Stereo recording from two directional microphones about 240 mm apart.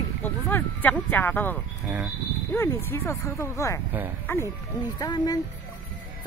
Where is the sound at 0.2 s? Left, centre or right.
Centre.